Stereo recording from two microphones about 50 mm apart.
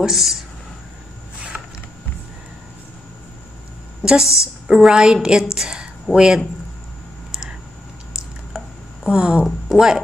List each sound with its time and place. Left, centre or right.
0.0 s speech: centre
4.0 s a woman's voice: centre
9.0 s speech: centre